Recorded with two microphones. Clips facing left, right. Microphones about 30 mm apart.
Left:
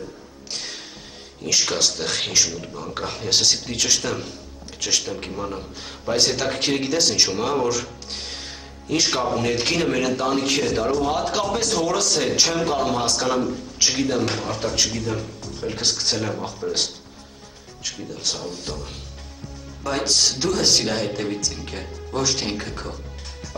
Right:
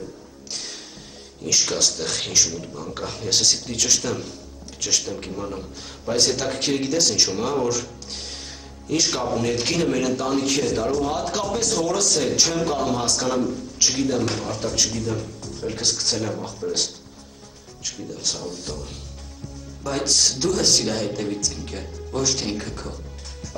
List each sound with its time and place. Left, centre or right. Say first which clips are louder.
0.5 s music: left 2 dB; centre
1.4 s a man's voice: left 1 dB; centre